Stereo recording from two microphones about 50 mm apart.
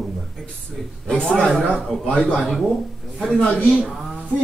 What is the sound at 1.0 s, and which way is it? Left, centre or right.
Speech, centre.